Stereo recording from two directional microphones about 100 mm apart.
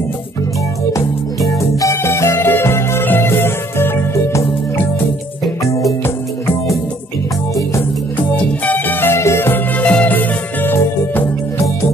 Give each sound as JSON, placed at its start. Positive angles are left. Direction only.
{"t": 1.8, "sound": "music", "side_deg": 30}
{"t": 8.6, "sound": "music", "side_deg": 20}